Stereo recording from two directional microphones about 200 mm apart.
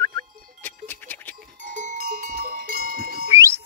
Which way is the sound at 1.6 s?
40° right (ahead or behind).